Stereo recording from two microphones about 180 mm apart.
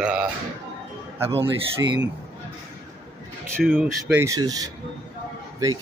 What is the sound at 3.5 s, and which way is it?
Speech, centre (ahead or behind).